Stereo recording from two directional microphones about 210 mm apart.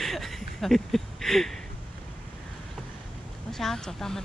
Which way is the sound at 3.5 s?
Centre (ahead or behind).